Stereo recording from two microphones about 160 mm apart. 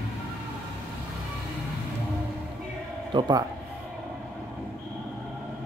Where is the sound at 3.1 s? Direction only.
25° right (ahead or behind).